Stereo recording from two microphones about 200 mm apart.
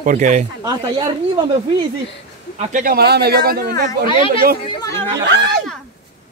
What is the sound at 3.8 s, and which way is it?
Speech, 20° left (ahead or behind).